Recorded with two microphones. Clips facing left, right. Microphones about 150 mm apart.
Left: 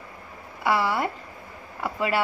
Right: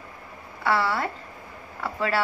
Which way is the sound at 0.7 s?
15° left (ahead or behind).